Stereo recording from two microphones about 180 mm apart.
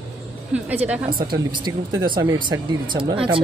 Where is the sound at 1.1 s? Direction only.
55° right (ahead or behind).